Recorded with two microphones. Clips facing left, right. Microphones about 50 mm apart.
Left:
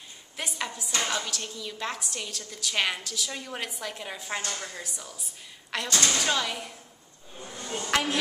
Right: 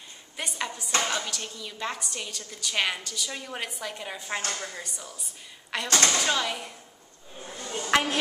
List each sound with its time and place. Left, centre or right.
0.4 s a woman's voice: centre
7.5 s a sound: left
7.8 s speech: centre